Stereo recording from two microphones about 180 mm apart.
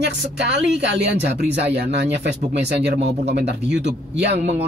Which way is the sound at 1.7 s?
70° right (ahead or behind).